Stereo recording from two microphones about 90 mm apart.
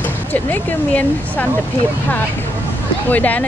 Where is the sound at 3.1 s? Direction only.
15° left (ahead or behind).